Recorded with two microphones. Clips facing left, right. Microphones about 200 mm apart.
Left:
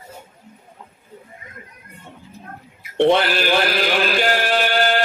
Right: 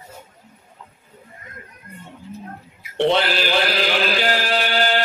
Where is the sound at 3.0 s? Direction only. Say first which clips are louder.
Left 2 dB; 50° left (ahead or behind).